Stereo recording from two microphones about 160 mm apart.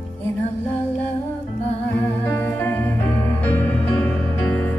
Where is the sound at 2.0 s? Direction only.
10° left (ahead or behind).